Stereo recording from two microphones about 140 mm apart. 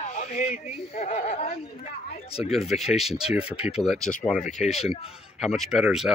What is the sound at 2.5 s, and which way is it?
Speech, centre (ahead or behind).